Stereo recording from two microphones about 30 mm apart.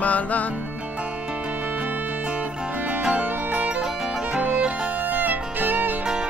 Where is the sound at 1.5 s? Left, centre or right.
Right.